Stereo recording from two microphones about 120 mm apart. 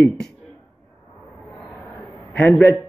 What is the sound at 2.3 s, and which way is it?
Speech, 15° left (ahead or behind).